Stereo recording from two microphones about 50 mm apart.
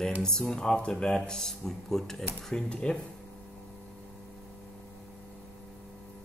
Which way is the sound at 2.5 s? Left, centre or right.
Centre.